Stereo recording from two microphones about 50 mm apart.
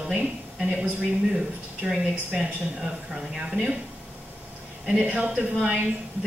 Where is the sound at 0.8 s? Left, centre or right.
Centre.